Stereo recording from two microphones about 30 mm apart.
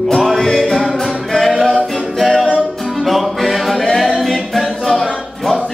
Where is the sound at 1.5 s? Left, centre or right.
Centre.